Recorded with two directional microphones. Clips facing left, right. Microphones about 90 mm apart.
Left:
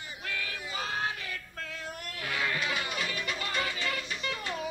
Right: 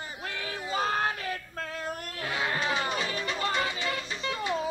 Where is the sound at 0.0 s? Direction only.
30° right (ahead or behind).